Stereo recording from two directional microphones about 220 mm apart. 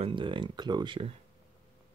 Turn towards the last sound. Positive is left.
turn(degrees=-20)  # may be behind; listen again after turning